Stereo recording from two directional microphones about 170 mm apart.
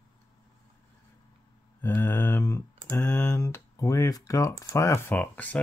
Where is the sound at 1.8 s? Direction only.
15° left (ahead or behind).